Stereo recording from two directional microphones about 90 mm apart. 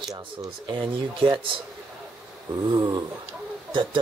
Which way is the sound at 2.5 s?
50° right (ahead or behind).